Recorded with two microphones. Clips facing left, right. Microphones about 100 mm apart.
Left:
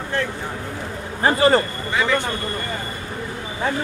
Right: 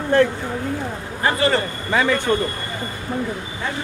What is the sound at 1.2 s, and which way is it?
Speech, 30° left (ahead or behind).